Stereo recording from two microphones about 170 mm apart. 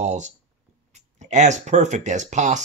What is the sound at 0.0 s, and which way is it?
Speech, 45° right (ahead or behind).